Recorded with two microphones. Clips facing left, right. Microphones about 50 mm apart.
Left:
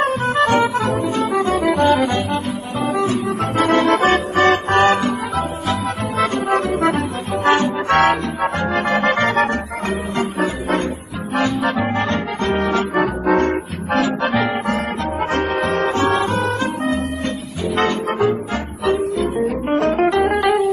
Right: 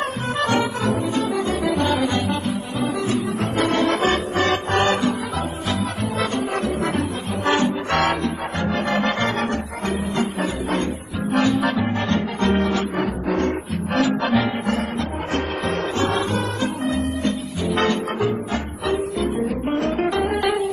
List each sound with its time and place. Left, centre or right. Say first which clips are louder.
0.4 s music: left 5 dB; left
3.0 s music: left 3 dB; left
6.8 s music: left 5 dB; left
7.4 s music: left 4 dB; left
17.7 s music: left 3 dB; left
18.9 s music: left 4 dB; left
20.4 s music: left 5 dB; centre